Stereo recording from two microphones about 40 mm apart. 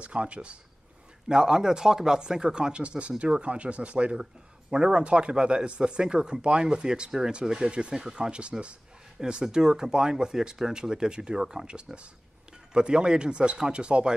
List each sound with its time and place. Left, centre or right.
0.0 s speech: right
1.3 s speech: centre
4.2 s speech: centre